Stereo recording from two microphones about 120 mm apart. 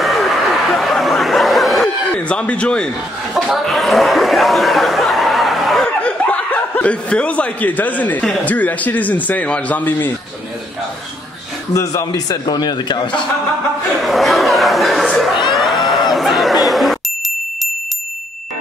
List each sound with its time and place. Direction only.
0.0 s snicker: centre (ahead or behind)
2.1 s speech: 10° left (ahead or behind)
11.7 s a man's voice: 25° left (ahead or behind)
14.0 s speech: centre (ahead or behind)
15.4 s a sound: centre (ahead or behind)